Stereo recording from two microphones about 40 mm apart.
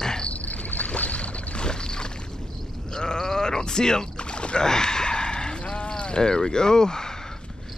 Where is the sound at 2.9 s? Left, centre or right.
Centre.